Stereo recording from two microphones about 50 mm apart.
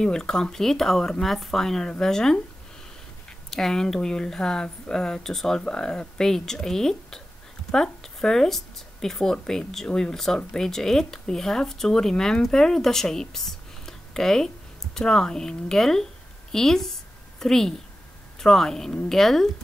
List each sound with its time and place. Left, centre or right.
0.0 s speech: centre
3.4 s a woman's voice: centre